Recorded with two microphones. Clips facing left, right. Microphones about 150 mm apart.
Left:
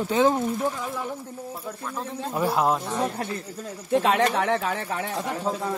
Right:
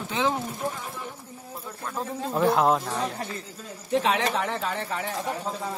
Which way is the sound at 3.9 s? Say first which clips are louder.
Left 3 dB; 60° left (ahead or behind).